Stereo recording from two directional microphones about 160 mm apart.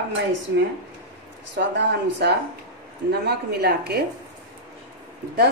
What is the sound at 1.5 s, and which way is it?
Speech, 90° right.